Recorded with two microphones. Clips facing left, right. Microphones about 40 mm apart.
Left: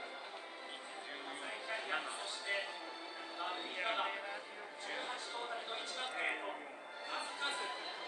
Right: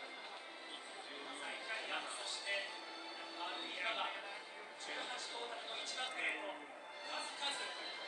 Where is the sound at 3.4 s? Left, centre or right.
Centre.